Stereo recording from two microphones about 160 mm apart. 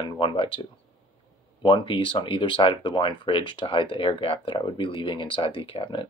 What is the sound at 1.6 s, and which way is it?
Speech, 30° left (ahead or behind).